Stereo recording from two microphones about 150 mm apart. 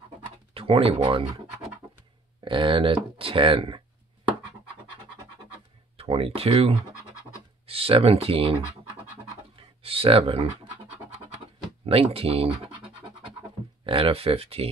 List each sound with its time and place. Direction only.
0.6 s speech: 40° right (ahead or behind)
2.4 s speech: 35° right (ahead or behind)
5.9 s speech: 40° right (ahead or behind)
9.6 s a sound: 40° right (ahead or behind)
11.8 s speech: 40° right (ahead or behind)
13.8 s speech: 35° right (ahead or behind)